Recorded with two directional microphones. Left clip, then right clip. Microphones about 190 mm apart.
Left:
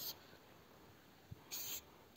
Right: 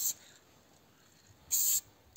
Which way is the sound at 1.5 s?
50° right (ahead or behind).